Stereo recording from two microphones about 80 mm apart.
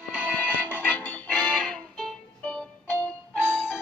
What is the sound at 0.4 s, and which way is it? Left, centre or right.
Music, left.